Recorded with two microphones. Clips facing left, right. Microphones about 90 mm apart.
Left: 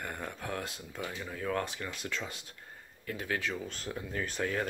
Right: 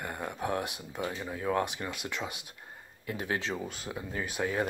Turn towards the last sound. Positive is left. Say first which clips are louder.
# right 2 dB
turn(degrees=-10)  # may be behind; listen again after turning